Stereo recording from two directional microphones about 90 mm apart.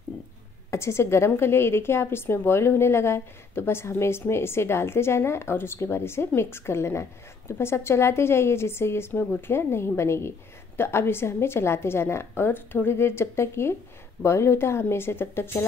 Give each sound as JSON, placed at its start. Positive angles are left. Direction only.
{"t": 0.7, "sound": "a woman's voice", "side_deg": 30}